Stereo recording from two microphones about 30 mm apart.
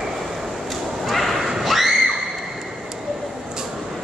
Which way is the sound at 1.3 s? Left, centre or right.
Centre.